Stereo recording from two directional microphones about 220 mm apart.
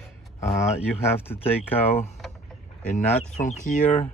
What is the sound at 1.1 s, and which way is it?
Speech, 10° left (ahead or behind).